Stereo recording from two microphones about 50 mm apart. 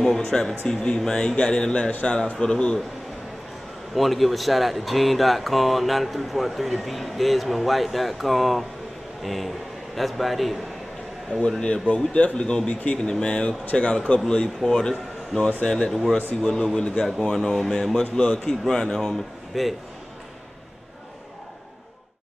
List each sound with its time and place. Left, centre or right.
0.0 s a man's voice: centre
3.9 s speech: centre
11.3 s a man's voice: left; by 19.1 s centre
19.5 s speech: centre